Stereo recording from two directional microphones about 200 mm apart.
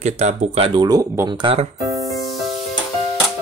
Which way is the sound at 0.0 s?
35° right (ahead or behind).